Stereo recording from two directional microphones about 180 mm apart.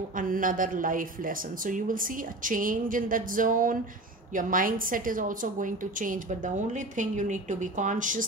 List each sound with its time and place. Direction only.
0.2 s speech: 50° right (ahead or behind)